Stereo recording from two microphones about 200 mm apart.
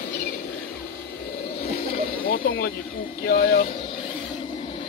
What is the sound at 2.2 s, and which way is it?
Vehicle, 45° left (ahead or behind).